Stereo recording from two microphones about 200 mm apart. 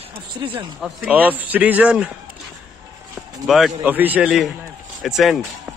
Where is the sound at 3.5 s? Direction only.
Centre (ahead or behind).